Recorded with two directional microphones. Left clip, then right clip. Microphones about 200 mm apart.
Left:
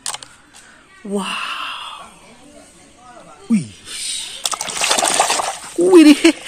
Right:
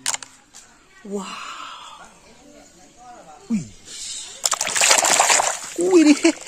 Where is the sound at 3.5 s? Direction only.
5° right (ahead or behind).